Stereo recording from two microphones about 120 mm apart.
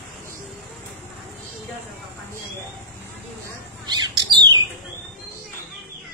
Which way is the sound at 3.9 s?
40° right (ahead or behind).